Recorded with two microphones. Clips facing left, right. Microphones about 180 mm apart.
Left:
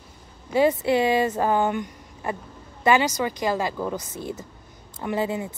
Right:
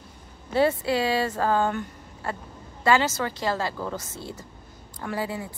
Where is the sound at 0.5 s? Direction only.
15° left (ahead or behind).